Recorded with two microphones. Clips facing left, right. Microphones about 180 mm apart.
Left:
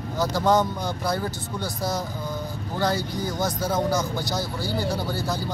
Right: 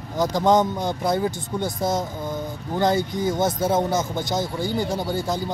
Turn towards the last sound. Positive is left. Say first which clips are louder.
# right 3 dB
turn(degrees=-20)  # may be behind; listen again after turning